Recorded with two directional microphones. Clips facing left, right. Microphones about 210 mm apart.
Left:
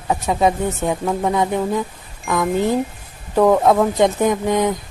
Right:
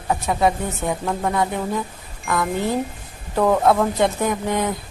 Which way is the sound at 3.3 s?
10° left (ahead or behind).